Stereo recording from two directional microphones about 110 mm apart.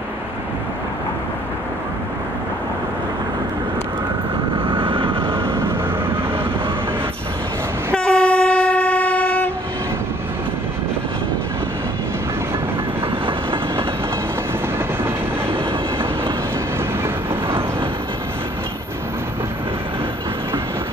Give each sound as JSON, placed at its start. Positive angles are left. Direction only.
{"t": 4.6, "sound": "vehicle", "side_deg": -50}
{"t": 5.3, "sound": "vehicle", "side_deg": -20}
{"t": 7.9, "sound": "train", "side_deg": 15}
{"t": 17.0, "sound": "train", "side_deg": -20}